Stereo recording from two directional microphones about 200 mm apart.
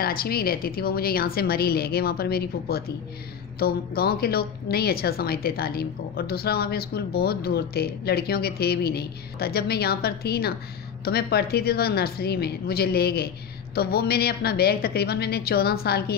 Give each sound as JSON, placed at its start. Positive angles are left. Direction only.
{"t": 0.0, "sound": "a woman's voice", "side_deg": 50}